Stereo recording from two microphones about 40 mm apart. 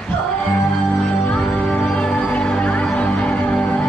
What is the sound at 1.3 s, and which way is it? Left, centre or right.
Music, left.